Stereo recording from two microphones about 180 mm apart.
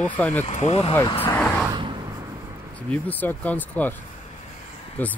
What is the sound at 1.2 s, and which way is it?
Speech, 10° left (ahead or behind).